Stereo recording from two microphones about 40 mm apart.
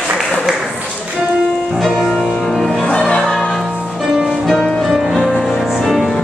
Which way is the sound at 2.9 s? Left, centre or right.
Centre.